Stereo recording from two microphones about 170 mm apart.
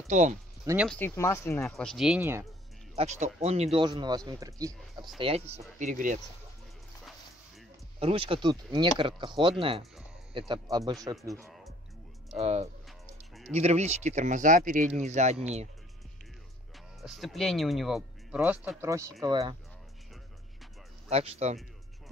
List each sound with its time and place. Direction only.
0.1 s speech: 45° right (ahead or behind)
0.8 s speech: 10° left (ahead or behind)
1.7 s speech: centre (ahead or behind)
3.0 s speech: 40° right (ahead or behind)
3.8 s speech: 25° right (ahead or behind)
5.2 s speech: 35° right (ahead or behind)
5.8 s speech: 50° right (ahead or behind)
8.0 s speech: 35° right (ahead or behind)
10.9 s speech: 20° right (ahead or behind)
12.3 s speech: 35° right (ahead or behind)
12.8 s music: centre (ahead or behind)
13.5 s speech: 40° right (ahead or behind)
17.0 s speech: centre (ahead or behind); by 19.5 s 20° right (ahead or behind)
21.1 s speech: 35° right (ahead or behind)